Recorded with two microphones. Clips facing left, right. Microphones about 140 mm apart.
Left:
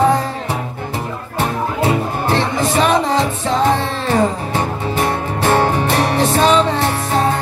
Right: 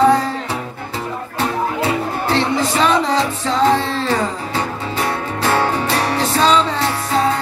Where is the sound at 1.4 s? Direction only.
20° left (ahead or behind).